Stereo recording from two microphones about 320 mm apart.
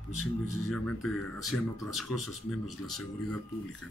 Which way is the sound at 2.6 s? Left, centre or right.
Right.